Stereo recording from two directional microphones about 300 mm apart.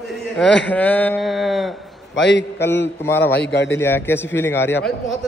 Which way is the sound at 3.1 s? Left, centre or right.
Centre.